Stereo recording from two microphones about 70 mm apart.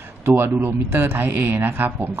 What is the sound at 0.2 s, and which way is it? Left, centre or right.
A man's voice, right.